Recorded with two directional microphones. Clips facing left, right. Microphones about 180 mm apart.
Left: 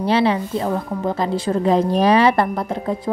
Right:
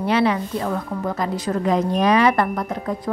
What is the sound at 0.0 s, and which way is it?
A woman's voice, 30° left (ahead or behind).